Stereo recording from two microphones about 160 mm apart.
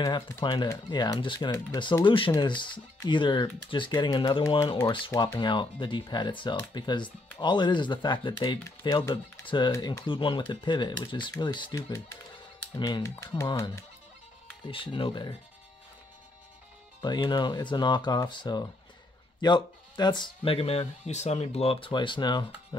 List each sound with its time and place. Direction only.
0.4 s speech: 25° left (ahead or behind)
14.7 s speech: 35° left (ahead or behind)
17.0 s speech: 25° left (ahead or behind)